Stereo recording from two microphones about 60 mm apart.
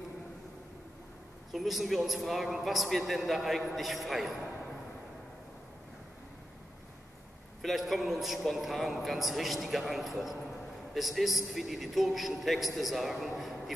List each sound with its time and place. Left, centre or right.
1.5 s a man's voice: centre
7.6 s a man's voice: centre